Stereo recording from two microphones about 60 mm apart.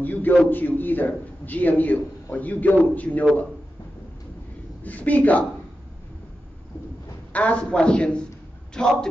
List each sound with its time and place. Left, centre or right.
0.0 s a man's voice: left
4.8 s a man's voice: left
7.3 s a man's voice: left